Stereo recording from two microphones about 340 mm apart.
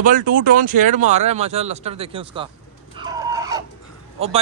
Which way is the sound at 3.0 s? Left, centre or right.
Centre.